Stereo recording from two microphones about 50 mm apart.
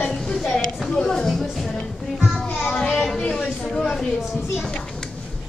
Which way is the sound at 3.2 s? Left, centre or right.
Centre.